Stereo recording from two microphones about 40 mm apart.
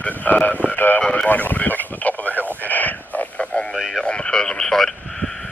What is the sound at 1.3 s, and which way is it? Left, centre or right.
Radio, left.